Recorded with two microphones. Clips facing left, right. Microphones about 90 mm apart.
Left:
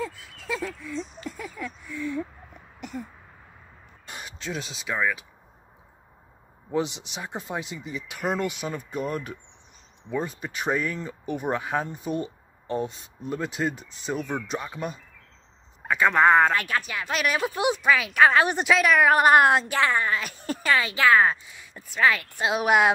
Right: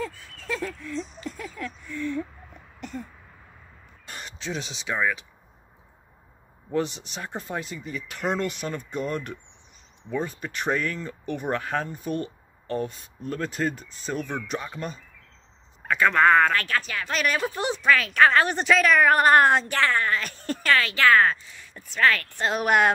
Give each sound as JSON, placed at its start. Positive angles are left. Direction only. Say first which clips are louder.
{"t": 0.0, "sound": "a sound", "louder": "even", "side_deg": 5}
{"t": 2.8, "sound": "speech", "louder": "even", "side_deg": 5}
{"t": 4.1, "sound": "speech", "louder": "right 1 dB", "side_deg": 10}
{"t": 6.7, "sound": "speech", "louder": "even", "side_deg": 15}